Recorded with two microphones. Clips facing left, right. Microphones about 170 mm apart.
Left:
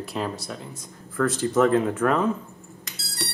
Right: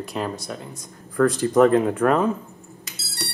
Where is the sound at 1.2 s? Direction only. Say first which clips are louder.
Right 5 dB; 40° right (ahead or behind).